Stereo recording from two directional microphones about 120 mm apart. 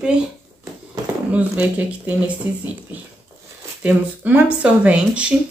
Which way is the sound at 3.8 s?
10° right (ahead or behind).